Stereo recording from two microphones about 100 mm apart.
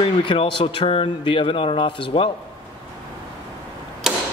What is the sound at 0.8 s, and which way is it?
Speech, 65° left (ahead or behind).